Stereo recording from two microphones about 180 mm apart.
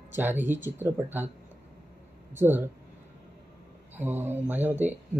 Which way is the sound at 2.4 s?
10° right (ahead or behind).